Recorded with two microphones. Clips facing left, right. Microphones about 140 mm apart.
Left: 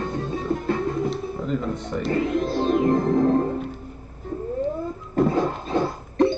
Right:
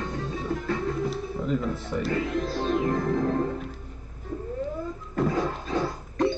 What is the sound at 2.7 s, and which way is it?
Music, 35° left (ahead or behind).